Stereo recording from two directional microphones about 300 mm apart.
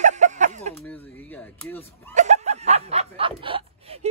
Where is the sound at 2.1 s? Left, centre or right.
Right.